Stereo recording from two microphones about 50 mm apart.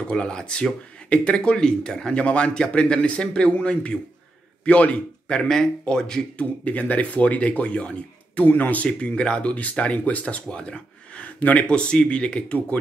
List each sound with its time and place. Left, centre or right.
0.0 s speech: centre
6.4 s speech: left
8.5 s speech: left
8.8 s speech: left